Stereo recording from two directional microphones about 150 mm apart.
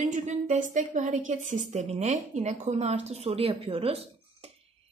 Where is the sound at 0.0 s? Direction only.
50° right (ahead or behind).